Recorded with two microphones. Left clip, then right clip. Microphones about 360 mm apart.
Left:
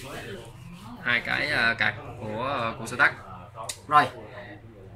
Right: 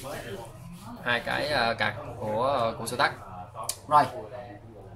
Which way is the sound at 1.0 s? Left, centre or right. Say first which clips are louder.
Left 2 dB; right.